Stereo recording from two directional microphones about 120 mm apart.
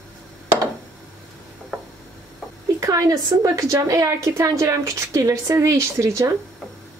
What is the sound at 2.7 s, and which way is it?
A woman's voice, 25° right (ahead or behind).